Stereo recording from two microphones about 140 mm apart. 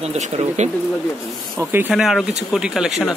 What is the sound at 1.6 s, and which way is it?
Speech, 15° right (ahead or behind).